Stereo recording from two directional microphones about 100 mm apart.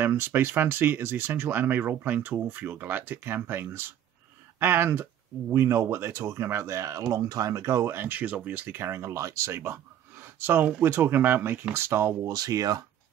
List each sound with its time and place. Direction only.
0.0 s speech: 20° right (ahead or behind)
12.4 s speech: 35° right (ahead or behind)